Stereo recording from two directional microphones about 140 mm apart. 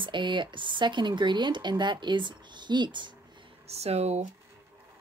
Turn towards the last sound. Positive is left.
turn(degrees=-50)  # may be behind; listen again after turning